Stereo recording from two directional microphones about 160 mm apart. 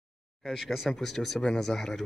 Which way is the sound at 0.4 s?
Centre (ahead or behind).